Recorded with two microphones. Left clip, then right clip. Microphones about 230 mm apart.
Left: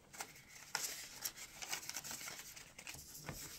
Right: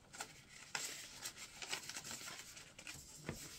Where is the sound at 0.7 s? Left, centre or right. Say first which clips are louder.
Left 2 dB; left.